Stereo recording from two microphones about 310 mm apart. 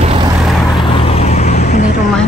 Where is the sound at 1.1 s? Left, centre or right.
Left.